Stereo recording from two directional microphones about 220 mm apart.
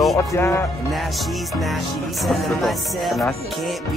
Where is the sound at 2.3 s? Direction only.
Centre (ahead or behind).